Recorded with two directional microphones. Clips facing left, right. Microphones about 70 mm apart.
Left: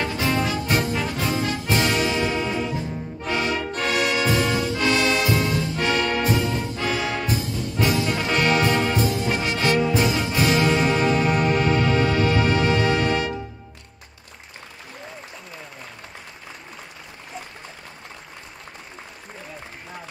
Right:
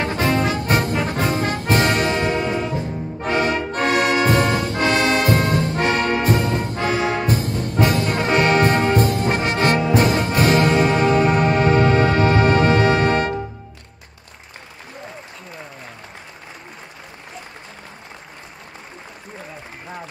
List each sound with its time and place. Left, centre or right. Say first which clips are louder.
0.0 s brass instrument: right 4 dB; right
5.8 s brass instrument: right 1 dB; right
6.2 s brass instrument: right 3 dB; right
6.9 s brass instrument: right 5 dB; right
7.2 s brass instrument: right 4 dB; right
8.3 s brass instrument: right 5 dB; right
9.9 s music: right 4 dB; right
10.7 s music: right 4 dB; right